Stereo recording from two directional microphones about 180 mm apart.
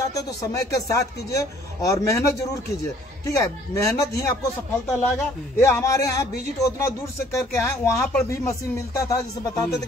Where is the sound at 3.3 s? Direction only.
15° left (ahead or behind).